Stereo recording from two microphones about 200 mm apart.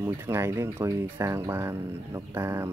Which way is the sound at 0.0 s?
10° right (ahead or behind).